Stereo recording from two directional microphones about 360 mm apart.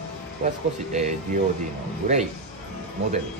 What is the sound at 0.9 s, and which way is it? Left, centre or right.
Speech, centre.